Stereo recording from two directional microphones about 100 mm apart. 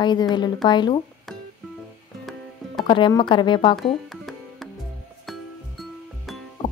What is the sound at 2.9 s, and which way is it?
Speech, 50° left (ahead or behind).